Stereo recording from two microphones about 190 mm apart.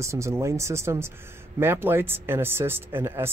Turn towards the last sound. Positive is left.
turn(degrees=-10)  # may be behind; listen again after turning